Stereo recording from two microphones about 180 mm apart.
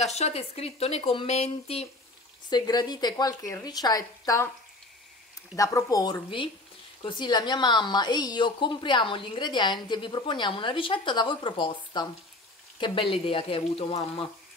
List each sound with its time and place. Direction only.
0.0 s speech: 35° left (ahead or behind)
2.5 s a woman's voice: 20° left (ahead or behind)
5.6 s a woman's voice: 20° left (ahead or behind)